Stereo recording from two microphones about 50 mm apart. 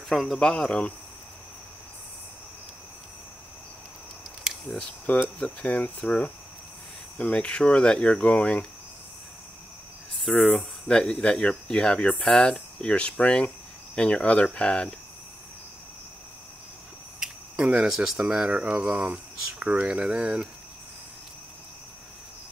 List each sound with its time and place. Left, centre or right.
0.1 s speech: centre
5.0 s speech: left
10.1 s speech: centre
10.9 s speech: centre
17.2 s cricket: right
17.8 s speech: centre
18.2 s speech: right